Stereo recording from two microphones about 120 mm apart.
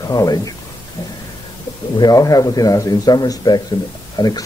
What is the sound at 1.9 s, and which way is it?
Speech, 30° left (ahead or behind).